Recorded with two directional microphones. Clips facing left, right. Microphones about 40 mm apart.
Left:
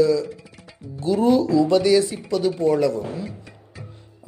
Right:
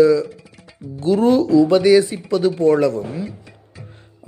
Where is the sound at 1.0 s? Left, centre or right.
Right.